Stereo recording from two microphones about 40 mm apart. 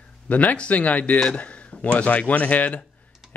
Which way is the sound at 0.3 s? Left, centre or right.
Left.